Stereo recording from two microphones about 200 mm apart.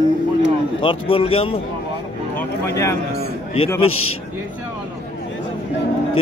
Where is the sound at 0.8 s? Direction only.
25° left (ahead or behind).